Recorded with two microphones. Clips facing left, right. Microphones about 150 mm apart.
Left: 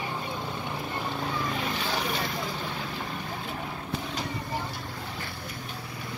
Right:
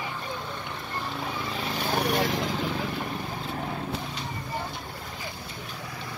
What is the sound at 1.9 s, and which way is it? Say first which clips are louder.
Vehicle: right 5 dB; 65° right (ahead or behind).